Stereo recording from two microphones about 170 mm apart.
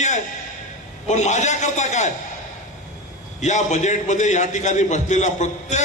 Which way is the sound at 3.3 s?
45° left (ahead or behind).